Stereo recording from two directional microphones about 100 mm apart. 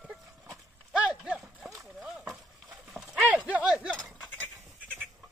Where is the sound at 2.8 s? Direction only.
5° right (ahead or behind).